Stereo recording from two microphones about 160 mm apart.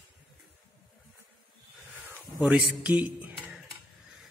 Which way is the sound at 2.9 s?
10° right (ahead or behind).